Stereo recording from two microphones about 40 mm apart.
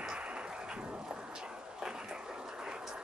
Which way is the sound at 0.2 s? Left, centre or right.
Right.